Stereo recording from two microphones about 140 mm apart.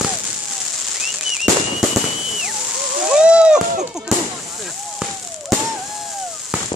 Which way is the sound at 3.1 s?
5° right (ahead or behind).